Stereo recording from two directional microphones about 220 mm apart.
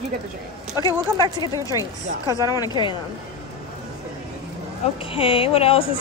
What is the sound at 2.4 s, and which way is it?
Speech, 20° left (ahead or behind).